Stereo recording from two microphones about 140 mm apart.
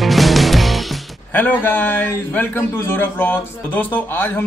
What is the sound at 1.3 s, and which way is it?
A man's voice, 15° left (ahead or behind).